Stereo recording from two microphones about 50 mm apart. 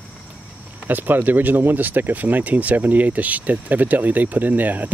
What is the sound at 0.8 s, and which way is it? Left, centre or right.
Speech, right.